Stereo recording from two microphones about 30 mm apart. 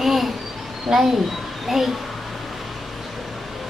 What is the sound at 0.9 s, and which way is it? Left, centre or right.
Speech, centre.